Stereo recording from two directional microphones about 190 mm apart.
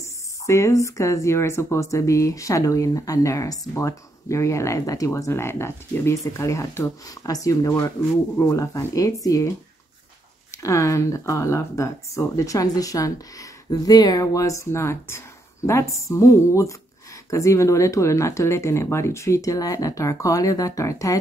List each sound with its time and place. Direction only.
0.0 s speech: 15° left (ahead or behind)
10.5 s speech: 15° left (ahead or behind)